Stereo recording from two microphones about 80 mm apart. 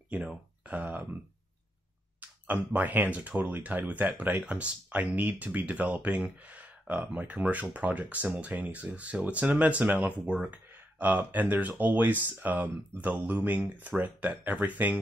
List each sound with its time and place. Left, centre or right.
0.1 s speech: centre
2.1 s speech: right